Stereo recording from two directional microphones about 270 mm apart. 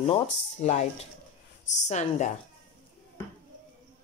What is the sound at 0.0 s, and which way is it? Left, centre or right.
Speech, left.